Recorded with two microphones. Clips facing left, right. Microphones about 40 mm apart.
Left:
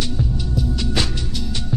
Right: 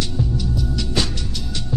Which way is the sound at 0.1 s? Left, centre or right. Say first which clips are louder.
Even; centre.